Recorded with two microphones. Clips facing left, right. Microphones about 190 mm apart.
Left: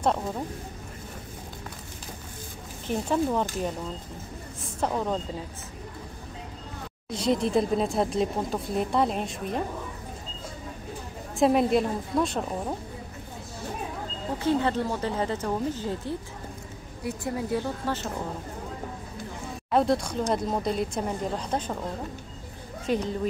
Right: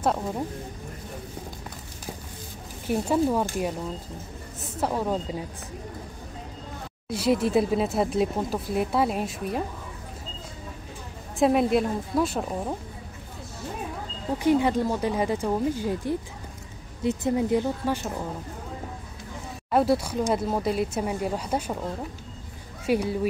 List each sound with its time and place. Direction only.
2.9 s speech: 10° right (ahead or behind)
7.1 s speech: 5° right (ahead or behind)
11.3 s speech: centre (ahead or behind)
14.4 s speech: 15° right (ahead or behind)
19.7 s speech: 5° right (ahead or behind)
22.8 s speech: 10° right (ahead or behind)